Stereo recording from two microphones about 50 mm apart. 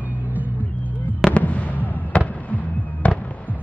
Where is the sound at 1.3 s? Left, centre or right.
Left.